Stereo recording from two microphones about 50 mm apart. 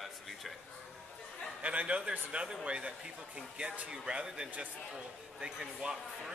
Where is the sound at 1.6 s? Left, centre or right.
Right.